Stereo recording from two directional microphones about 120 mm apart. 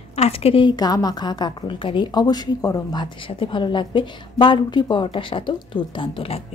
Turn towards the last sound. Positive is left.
turn(degrees=50)  # may be behind; listen again after turning